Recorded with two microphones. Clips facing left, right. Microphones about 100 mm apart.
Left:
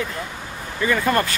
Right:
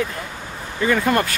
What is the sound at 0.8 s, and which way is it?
Speech, 15° right (ahead or behind).